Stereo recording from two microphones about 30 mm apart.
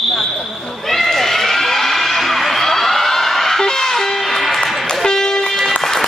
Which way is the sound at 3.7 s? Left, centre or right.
Centre.